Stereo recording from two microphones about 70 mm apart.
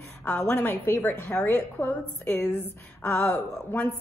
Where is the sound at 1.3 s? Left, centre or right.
Centre.